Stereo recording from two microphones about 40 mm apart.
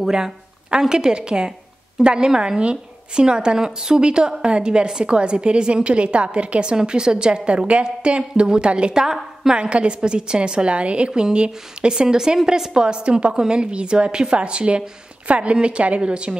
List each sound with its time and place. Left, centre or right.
0.0 s a woman's voice: centre
9.0 s a woman's voice: centre
9.6 s a woman's voice: right
11.9 s a woman's voice: centre